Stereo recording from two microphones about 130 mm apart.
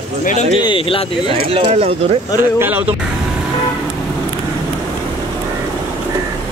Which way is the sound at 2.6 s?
10° right (ahead or behind).